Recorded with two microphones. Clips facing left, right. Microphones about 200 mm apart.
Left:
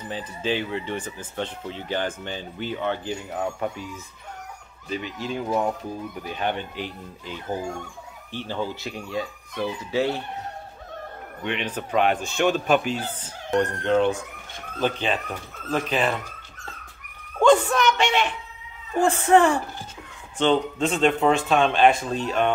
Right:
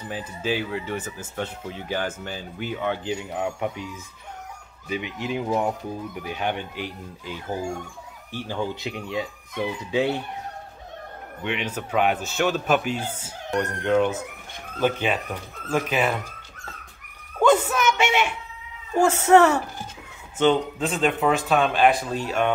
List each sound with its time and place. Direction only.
0.1 s speech: 10° right (ahead or behind)
4.8 s speech: 15° right (ahead or behind)
11.4 s speech: 10° right (ahead or behind)
17.4 s a sound: 5° right (ahead or behind)
19.0 s speech: 10° left (ahead or behind)
20.3 s a man's voice: 5° right (ahead or behind)